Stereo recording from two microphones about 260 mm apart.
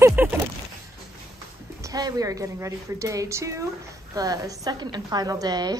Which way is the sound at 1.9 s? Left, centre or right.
Centre.